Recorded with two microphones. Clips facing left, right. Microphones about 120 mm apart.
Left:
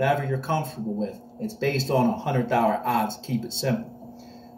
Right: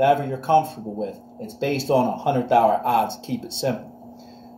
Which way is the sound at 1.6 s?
15° right (ahead or behind).